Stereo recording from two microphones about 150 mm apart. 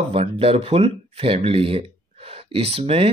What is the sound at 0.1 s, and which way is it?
Speech, 40° right (ahead or behind).